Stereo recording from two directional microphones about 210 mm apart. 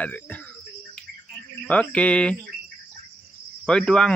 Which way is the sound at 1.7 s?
5° left (ahead or behind).